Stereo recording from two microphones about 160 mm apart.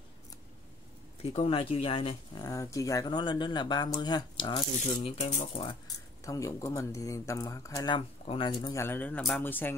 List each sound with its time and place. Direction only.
1.2 s speech: 40° left (ahead or behind)
2.4 s speech: 20° left (ahead or behind)
6.2 s speech: 20° left (ahead or behind)
8.8 s speech: 10° left (ahead or behind)